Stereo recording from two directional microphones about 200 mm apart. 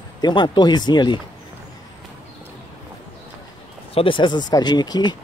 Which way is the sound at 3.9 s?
25° left (ahead or behind).